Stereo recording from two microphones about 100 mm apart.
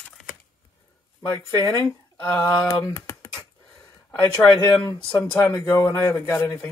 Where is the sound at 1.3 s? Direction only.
35° left (ahead or behind).